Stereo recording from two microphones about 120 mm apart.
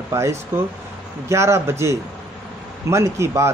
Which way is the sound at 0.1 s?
25° right (ahead or behind).